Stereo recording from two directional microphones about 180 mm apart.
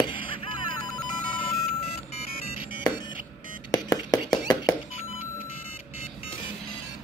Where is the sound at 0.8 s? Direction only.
25° left (ahead or behind).